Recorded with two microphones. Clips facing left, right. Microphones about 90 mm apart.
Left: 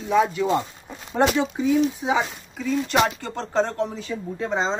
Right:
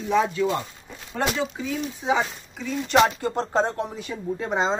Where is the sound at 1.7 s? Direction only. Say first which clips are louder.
Left 2 dB; 5° left (ahead or behind).